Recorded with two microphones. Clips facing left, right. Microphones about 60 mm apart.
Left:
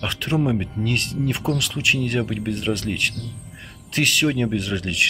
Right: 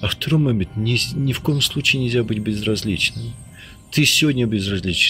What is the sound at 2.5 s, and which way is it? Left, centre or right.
Speech, centre.